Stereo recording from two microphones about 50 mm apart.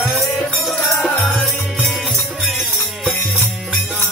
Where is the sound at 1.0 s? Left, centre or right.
Left.